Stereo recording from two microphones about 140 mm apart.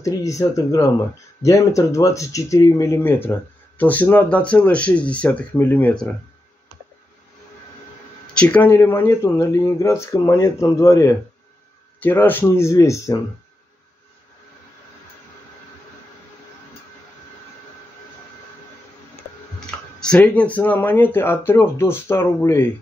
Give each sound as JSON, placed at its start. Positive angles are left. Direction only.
{"t": 0.0, "sound": "speech", "side_deg": 20}
{"t": 8.4, "sound": "speech", "side_deg": 10}
{"t": 19.6, "sound": "speech", "side_deg": 5}